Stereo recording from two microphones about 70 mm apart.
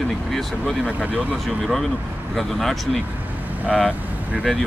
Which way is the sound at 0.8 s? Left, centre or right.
Right.